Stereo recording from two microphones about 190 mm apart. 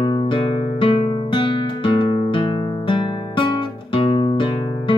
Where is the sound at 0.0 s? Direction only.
25° left (ahead or behind).